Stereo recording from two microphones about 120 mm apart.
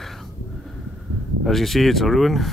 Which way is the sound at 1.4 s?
Centre (ahead or behind).